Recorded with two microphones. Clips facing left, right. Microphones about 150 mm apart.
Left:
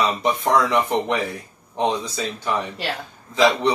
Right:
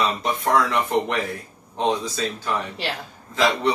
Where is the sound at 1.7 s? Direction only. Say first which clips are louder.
Even; 15° left (ahead or behind).